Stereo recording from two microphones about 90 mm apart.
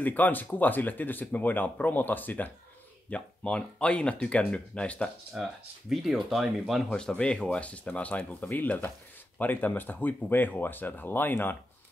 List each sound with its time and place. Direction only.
0.0 s speech: 20° left (ahead or behind)
5.3 s speech: centre (ahead or behind)
6.9 s speech: 10° left (ahead or behind)